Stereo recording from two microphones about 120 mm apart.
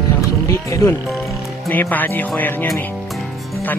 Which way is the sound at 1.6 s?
15° left (ahead or behind).